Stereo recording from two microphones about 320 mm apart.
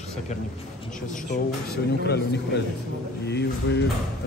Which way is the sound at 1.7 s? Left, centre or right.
Left.